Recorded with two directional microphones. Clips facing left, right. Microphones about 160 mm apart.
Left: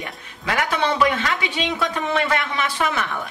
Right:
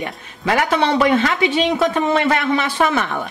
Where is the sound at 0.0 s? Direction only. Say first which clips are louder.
Right 7 dB; 35° right (ahead or behind).